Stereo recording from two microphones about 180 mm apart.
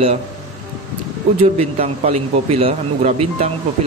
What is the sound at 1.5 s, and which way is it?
A man's voice, 35° right (ahead or behind).